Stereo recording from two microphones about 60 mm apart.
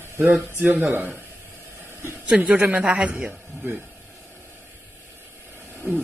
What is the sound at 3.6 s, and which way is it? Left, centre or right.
Speech, right.